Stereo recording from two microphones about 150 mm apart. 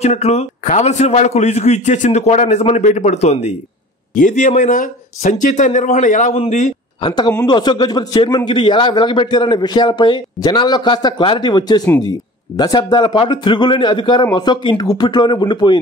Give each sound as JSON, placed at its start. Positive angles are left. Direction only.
{"t": 0.0, "sound": "a man's voice", "side_deg": 45}
{"t": 6.3, "sound": "a man's voice", "side_deg": 40}
{"t": 7.0, "sound": "a man's voice", "side_deg": 30}